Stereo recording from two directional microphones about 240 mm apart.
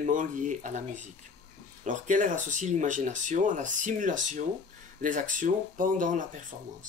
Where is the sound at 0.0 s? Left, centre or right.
Right.